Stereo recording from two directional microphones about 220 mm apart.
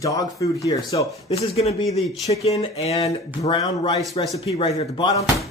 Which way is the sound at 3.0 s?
20° left (ahead or behind).